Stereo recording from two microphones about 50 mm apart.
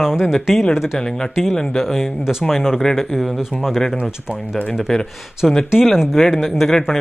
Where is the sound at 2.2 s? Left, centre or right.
Centre.